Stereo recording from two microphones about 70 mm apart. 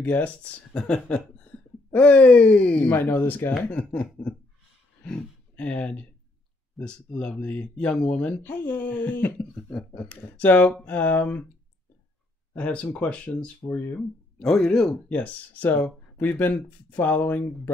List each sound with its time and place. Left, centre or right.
0.0 s speech: left
3.7 s speech: centre
8.4 s speech: left
12.5 s speech: left
14.4 s speech: centre
15.0 s speech: left